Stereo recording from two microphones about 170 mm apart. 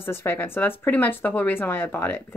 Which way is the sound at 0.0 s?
15° left (ahead or behind).